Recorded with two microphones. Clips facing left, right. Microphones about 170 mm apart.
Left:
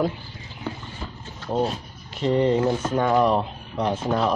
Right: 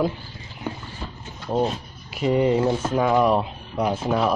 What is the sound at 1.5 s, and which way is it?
Speech, 5° right (ahead or behind).